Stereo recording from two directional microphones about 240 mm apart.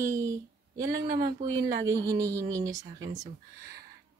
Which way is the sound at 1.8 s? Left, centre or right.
Centre.